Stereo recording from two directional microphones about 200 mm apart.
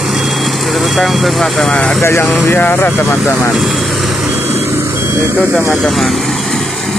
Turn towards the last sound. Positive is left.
turn(degrees=0)  # may be behind; listen again after turning